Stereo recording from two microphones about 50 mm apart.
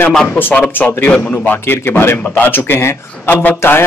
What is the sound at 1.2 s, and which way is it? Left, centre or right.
Speech, left.